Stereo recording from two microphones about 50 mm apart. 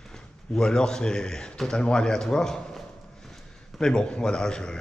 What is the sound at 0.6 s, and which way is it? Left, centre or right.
Speech, centre.